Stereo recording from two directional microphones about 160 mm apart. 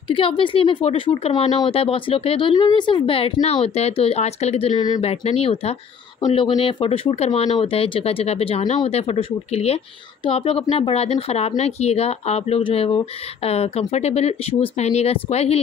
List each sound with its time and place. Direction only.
0.1 s speech: 30° left (ahead or behind)
4.7 s speech: 25° left (ahead or behind)
5.0 s speech: 40° left (ahead or behind)